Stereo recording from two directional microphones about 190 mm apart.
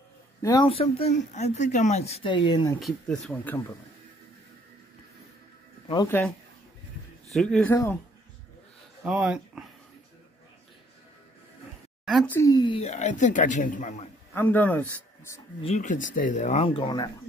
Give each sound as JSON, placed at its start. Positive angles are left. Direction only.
{"t": 0.4, "sound": "speech", "side_deg": 20}
{"t": 2.8, "sound": "speech", "side_deg": 5}
{"t": 6.0, "sound": "speech", "side_deg": 10}
{"t": 7.3, "sound": "speech", "side_deg": 0}
{"t": 7.7, "sound": "speech", "side_deg": 15}
{"t": 9.0, "sound": "speech", "side_deg": -5}
{"t": 12.0, "sound": "a sound", "side_deg": 0}
{"t": 12.3, "sound": "speech", "side_deg": 15}
{"t": 14.3, "sound": "speech", "side_deg": 10}
{"t": 15.6, "sound": "speech", "side_deg": 40}